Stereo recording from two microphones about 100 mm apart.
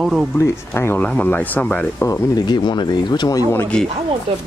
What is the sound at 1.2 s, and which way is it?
Speech, 15° left (ahead or behind).